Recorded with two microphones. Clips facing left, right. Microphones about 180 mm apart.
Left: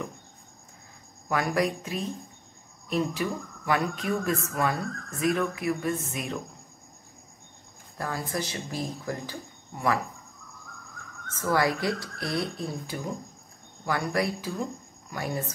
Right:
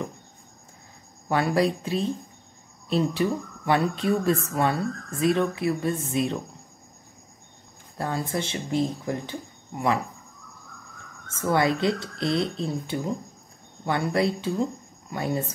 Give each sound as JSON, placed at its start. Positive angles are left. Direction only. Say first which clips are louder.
{"t": 1.3, "sound": "speech", "louder": "right 4 dB", "side_deg": -30}
{"t": 8.0, "sound": "speech", "louder": "right 3 dB", "side_deg": -25}
{"t": 11.2, "sound": "speech", "louder": "right 3 dB", "side_deg": -25}